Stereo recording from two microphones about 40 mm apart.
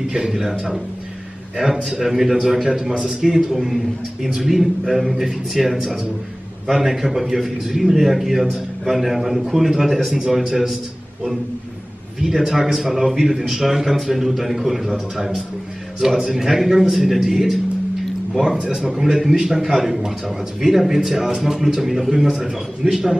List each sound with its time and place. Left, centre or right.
0.1 s speech: centre
1.9 s a man's voice: centre
12.2 s a man's voice: centre
18.6 s speech: centre